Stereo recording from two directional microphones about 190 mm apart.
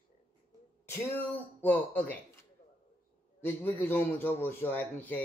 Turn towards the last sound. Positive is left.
turn(degrees=10)  # may be behind; listen again after turning